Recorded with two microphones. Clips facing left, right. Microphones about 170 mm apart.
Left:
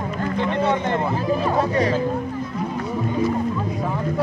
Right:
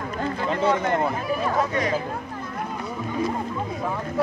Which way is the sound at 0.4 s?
25° left (ahead or behind).